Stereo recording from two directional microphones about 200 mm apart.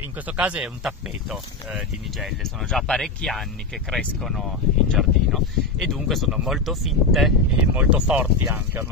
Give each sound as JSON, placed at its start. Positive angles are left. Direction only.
{"t": 0.3, "sound": "speech", "side_deg": -5}